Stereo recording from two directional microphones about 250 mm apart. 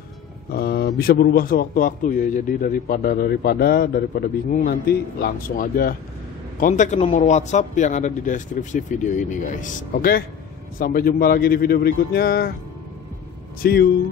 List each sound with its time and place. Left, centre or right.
0.5 s a man's voice: left
13.6 s a man's voice: left